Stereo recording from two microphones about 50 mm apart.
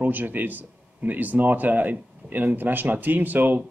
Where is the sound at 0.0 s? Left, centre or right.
Right.